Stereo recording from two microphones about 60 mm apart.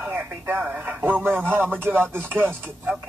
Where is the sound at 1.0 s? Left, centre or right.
Right.